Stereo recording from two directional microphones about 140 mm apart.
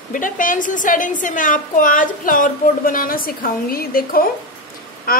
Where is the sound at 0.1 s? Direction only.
70° left (ahead or behind).